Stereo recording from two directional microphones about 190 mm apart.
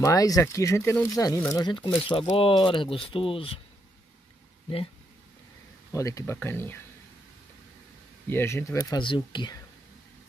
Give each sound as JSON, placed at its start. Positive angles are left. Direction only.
{"t": 0.0, "sound": "speech", "side_deg": 20}
{"t": 5.9, "sound": "speech", "side_deg": 15}
{"t": 8.3, "sound": "speech", "side_deg": 10}
{"t": 8.9, "sound": "speech", "side_deg": 25}